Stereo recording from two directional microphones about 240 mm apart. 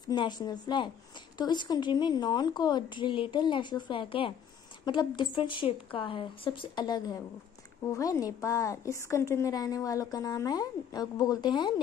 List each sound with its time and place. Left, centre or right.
0.1 s a woman's voice: centre